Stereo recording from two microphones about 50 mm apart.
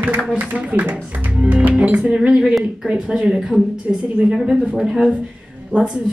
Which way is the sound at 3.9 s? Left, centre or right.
Right.